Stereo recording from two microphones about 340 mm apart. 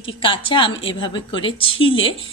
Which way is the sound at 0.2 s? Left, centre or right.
Centre.